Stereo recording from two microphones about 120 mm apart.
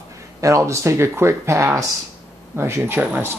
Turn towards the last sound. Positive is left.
turn(degrees=-15)  # may be behind; listen again after turning